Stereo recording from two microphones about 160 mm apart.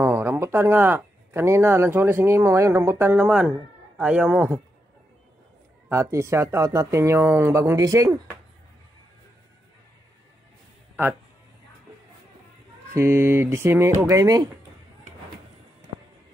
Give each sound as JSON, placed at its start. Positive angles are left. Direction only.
{"t": 0.0, "sound": "speech", "side_deg": -10}
{"t": 5.9, "sound": "speech", "side_deg": -15}
{"t": 12.9, "sound": "speech", "side_deg": -15}